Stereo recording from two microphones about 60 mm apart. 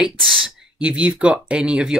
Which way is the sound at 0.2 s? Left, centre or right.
Centre.